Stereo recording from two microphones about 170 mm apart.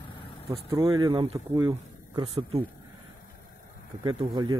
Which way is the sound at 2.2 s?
35° right (ahead or behind).